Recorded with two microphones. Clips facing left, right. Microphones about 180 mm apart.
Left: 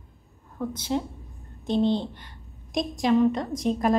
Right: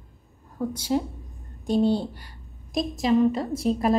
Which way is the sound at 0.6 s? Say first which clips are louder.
Right 2 dB; 10° right (ahead or behind).